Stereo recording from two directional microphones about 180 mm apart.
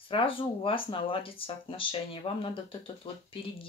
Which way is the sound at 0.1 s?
30° left (ahead or behind).